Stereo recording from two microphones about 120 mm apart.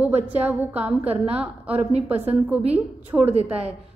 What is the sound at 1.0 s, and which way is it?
Speech, 55° right (ahead or behind).